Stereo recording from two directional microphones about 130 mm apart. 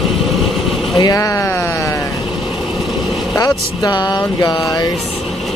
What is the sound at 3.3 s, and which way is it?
Speech, 30° left (ahead or behind).